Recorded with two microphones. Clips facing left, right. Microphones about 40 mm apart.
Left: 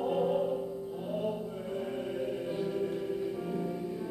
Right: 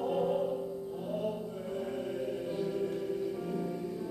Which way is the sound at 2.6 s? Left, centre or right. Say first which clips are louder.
Even; centre.